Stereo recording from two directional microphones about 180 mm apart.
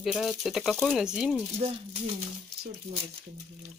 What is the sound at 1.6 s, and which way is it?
Speech, 30° right (ahead or behind).